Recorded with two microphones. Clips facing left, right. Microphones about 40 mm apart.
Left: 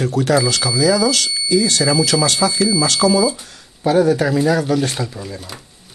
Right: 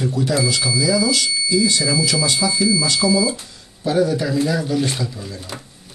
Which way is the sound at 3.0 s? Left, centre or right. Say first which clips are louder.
Left 3 dB; left.